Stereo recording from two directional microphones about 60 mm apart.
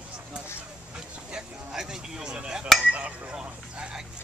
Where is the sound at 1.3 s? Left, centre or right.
Centre.